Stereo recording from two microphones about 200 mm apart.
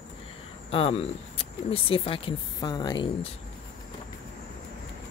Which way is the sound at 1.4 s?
25° left (ahead or behind).